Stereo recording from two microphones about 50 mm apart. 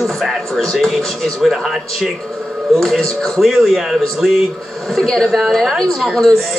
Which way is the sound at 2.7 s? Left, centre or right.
Centre.